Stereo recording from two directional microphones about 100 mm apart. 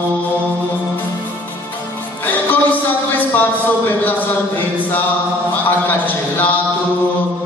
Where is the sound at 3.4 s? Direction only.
20° left (ahead or behind).